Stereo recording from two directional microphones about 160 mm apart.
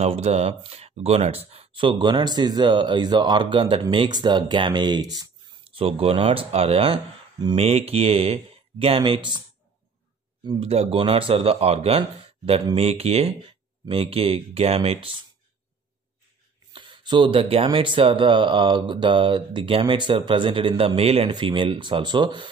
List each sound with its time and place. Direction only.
0.0 s speech: 40° right (ahead or behind); by 5.3 s 25° right (ahead or behind)
5.8 s speech: 35° right (ahead or behind)
10.4 s speech: 35° right (ahead or behind)
16.7 s speech: 30° right (ahead or behind)